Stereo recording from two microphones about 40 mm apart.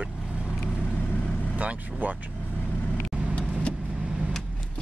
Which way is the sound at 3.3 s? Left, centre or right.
Left.